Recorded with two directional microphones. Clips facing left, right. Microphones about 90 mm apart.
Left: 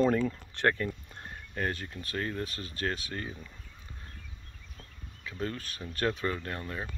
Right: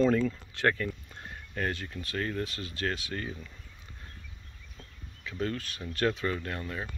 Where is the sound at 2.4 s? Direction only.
35° left (ahead or behind).